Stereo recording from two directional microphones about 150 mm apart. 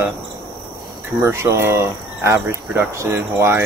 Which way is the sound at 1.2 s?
15° right (ahead or behind).